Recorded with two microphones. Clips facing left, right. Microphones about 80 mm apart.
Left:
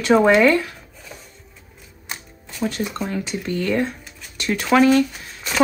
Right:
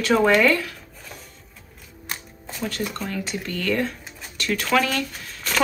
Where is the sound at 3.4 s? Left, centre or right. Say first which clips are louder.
Left 3 dB; left.